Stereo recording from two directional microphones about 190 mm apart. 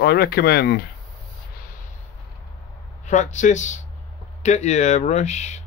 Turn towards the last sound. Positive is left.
turn(degrees=35)  # may be behind; listen again after turning